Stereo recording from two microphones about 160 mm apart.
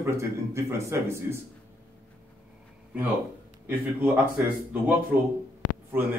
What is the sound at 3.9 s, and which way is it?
Speech, 10° right (ahead or behind).